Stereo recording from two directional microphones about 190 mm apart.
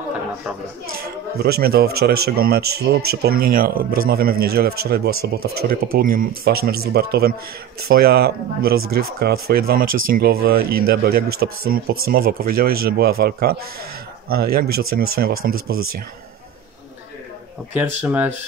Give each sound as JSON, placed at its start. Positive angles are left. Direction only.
{"t": 0.9, "sound": "speech", "side_deg": -55}
{"t": 17.7, "sound": "speech", "side_deg": -10}